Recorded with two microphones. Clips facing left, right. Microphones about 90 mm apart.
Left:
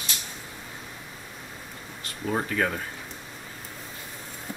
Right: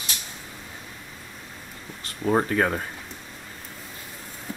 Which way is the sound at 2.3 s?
35° right (ahead or behind).